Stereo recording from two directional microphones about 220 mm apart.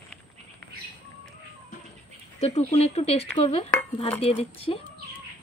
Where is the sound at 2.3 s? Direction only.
30° left (ahead or behind).